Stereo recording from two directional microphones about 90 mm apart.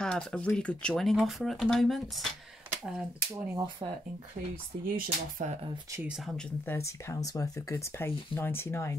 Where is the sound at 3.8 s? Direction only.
65° right (ahead or behind).